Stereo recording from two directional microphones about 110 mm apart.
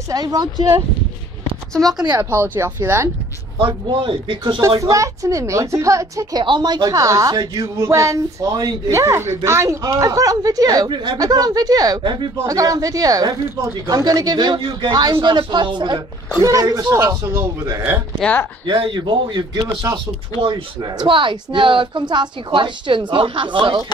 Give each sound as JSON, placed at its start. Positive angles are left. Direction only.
{"t": 0.1, "sound": "speech", "side_deg": -35}
{"t": 2.2, "sound": "a woman's voice", "side_deg": -20}
{"t": 3.5, "sound": "speech", "side_deg": -50}
{"t": 4.6, "sound": "a woman's voice", "side_deg": -30}
{"t": 6.4, "sound": "speech", "side_deg": -40}
{"t": 8.9, "sound": "speech", "side_deg": -25}
{"t": 16.4, "sound": "speech", "side_deg": -30}
{"t": 17.3, "sound": "a woman's voice", "side_deg": -20}
{"t": 18.7, "sound": "speech", "side_deg": -45}